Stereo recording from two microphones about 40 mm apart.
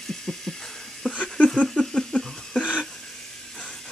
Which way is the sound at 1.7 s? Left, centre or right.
Centre.